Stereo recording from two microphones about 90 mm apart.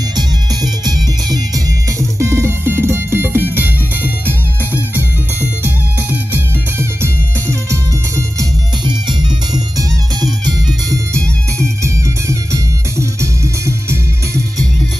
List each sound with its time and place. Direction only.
0.6 s music: 45° right (ahead or behind); by 7.8 s 30° right (ahead or behind)
9.5 s music: 50° right (ahead or behind)
11.8 s music: 35° right (ahead or behind)